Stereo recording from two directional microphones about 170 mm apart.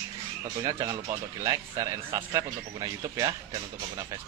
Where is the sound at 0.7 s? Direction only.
20° right (ahead or behind).